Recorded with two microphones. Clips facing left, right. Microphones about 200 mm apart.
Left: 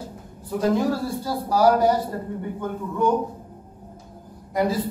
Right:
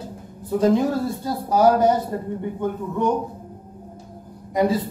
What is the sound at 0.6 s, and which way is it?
A woman's voice, 20° right (ahead or behind).